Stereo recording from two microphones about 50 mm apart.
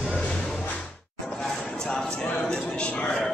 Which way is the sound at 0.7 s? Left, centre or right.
Left.